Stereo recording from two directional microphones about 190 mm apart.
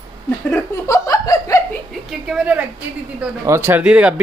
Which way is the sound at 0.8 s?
15° left (ahead or behind).